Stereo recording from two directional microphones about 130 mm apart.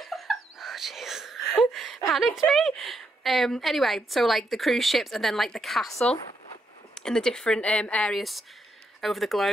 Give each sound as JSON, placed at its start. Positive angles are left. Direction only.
{"t": 0.0, "sound": "a sound", "side_deg": 0}
{"t": 2.0, "sound": "a woman's voice", "side_deg": 0}
{"t": 7.0, "sound": "a woman's voice", "side_deg": 5}